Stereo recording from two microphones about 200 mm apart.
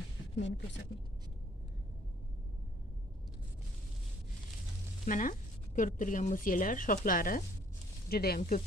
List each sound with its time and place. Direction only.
0.4 s speech: 65° left (ahead or behind)
5.0 s speech: 40° left (ahead or behind)
8.4 s speech: 35° left (ahead or behind)